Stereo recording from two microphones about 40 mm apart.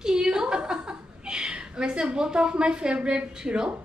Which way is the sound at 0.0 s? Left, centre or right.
Centre.